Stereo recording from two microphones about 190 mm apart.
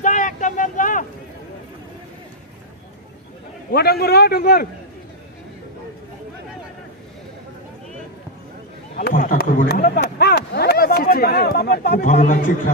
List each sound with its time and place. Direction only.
0.0 s vehicle: 40° left (ahead or behind)
3.7 s a man's voice: 55° left (ahead or behind)
8.9 s a sound: 50° left (ahead or behind)